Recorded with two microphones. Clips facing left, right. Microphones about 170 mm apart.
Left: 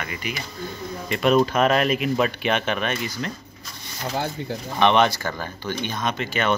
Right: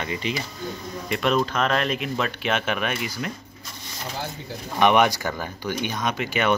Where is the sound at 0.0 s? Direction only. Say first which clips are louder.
Right 3 dB; 25° right (ahead or behind).